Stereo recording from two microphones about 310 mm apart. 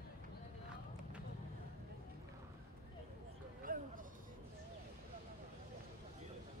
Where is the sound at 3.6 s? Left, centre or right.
Right.